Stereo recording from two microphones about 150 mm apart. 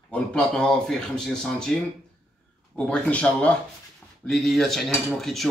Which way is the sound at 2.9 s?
10° left (ahead or behind).